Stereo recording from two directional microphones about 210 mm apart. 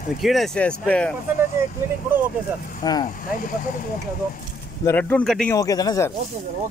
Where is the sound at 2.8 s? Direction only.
20° left (ahead or behind).